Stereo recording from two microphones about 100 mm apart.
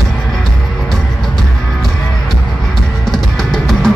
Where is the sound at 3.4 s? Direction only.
5° left (ahead or behind).